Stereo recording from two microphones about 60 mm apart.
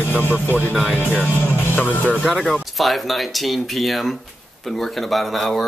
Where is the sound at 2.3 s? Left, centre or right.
Centre.